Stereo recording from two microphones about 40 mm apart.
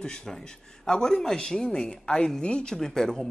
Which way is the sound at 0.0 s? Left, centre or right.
Centre.